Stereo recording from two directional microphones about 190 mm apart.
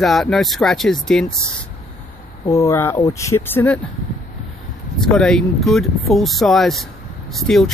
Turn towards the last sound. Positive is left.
turn(degrees=0)  # may be behind; listen again after turning